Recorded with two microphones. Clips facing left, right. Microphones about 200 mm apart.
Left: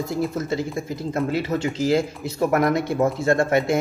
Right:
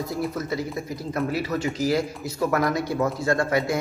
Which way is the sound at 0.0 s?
25° left (ahead or behind).